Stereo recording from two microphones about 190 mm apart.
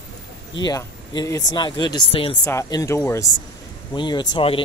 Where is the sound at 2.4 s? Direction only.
15° left (ahead or behind).